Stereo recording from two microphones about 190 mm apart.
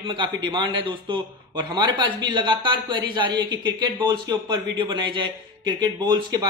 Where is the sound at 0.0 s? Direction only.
25° right (ahead or behind).